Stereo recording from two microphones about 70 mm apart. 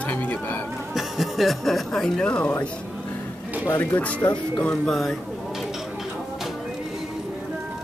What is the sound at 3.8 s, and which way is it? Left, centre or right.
Speech, left.